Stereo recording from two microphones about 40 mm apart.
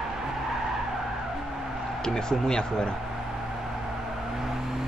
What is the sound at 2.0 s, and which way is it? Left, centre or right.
Speech, centre.